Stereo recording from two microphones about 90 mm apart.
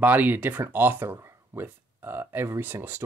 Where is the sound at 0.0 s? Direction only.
20° right (ahead or behind).